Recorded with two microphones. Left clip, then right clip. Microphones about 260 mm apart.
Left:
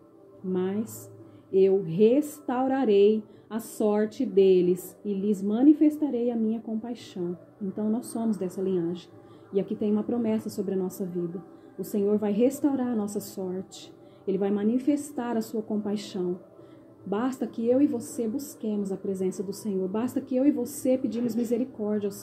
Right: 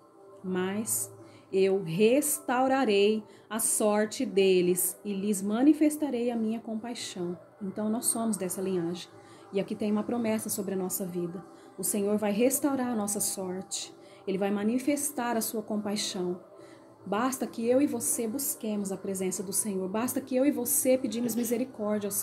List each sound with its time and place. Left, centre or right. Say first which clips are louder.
0.5 s a woman's voice: left 3 dB; centre
1.9 s a woman's voice: left 2 dB; centre